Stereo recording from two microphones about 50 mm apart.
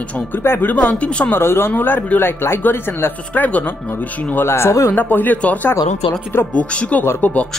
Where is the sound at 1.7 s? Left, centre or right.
Left.